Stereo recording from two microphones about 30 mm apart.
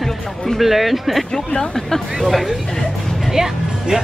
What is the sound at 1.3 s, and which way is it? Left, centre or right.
Speech, centre.